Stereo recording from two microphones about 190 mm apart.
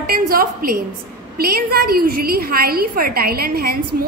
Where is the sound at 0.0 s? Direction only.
50° right (ahead or behind).